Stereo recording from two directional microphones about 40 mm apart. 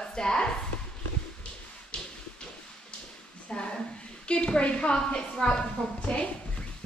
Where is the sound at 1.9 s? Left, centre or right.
Left.